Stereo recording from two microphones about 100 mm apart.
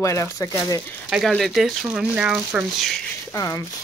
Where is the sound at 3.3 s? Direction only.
30° left (ahead or behind).